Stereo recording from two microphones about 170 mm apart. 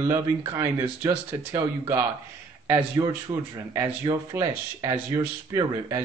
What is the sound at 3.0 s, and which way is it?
Speech, 20° right (ahead or behind).